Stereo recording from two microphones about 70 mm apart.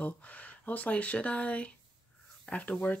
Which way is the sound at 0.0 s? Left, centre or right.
Left.